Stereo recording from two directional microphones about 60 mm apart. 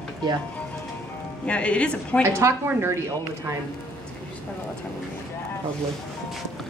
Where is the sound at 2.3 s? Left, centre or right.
Right.